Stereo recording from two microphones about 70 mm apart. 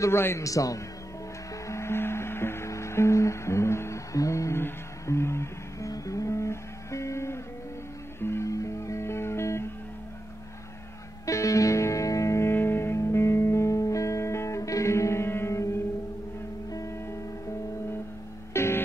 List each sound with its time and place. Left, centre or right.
0.0 s a man's voice: left
0.5 s a man's voice: left
1.7 s music: left
11.2 s music: left
18.5 s music: left